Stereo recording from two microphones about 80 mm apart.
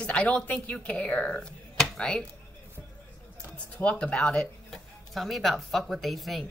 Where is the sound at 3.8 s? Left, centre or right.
Centre.